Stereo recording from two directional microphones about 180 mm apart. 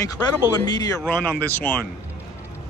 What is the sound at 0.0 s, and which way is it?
Speech, 20° left (ahead or behind).